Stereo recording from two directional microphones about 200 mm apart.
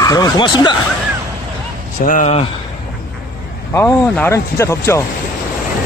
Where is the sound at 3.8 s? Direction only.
10° left (ahead or behind).